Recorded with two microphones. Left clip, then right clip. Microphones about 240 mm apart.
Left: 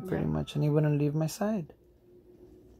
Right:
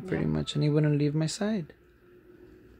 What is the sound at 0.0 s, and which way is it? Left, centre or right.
Speech, centre.